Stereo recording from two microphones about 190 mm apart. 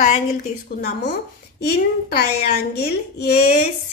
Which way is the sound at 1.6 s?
55° left (ahead or behind).